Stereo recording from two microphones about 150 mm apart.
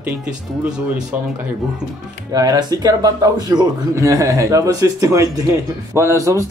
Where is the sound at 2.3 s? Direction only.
25° right (ahead or behind).